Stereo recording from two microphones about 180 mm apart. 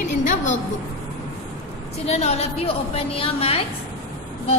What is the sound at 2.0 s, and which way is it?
A woman's voice, 35° left (ahead or behind).